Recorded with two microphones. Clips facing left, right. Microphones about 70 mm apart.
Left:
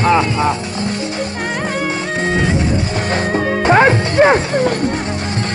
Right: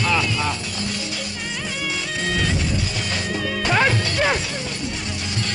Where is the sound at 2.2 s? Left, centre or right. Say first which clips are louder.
Left 7 dB; left.